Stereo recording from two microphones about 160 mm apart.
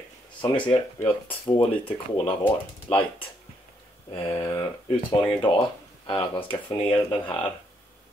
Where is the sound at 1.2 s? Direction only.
35° left (ahead or behind).